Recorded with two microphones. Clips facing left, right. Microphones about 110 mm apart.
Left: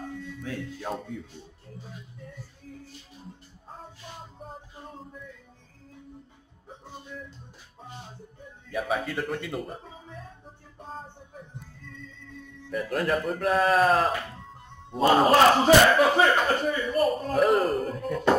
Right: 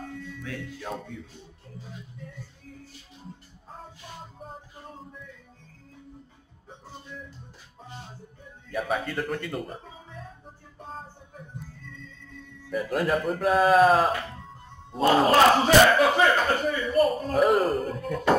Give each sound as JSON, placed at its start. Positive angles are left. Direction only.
{"t": 0.4, "sound": "speech", "side_deg": 30}
{"t": 0.8, "sound": "speech", "side_deg": 10}
{"t": 8.7, "sound": "speech", "side_deg": 0}
{"t": 10.4, "sound": "music", "side_deg": 0}
{"t": 12.6, "sound": "speech", "side_deg": 0}